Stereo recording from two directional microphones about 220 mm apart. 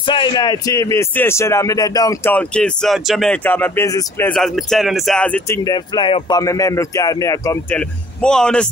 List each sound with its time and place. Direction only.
0.0 s speech: 20° left (ahead or behind); by 5.6 s 5° left (ahead or behind)
5.6 s speech: 20° left (ahead or behind)
7.7 s speech: 5° left (ahead or behind)